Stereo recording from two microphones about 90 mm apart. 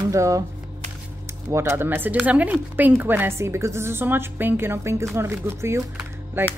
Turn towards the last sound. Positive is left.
turn(degrees=-30)  # may be behind; listen again after turning